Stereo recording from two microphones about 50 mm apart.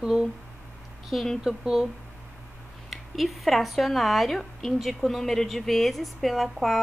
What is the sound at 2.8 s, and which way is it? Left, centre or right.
Speech, centre.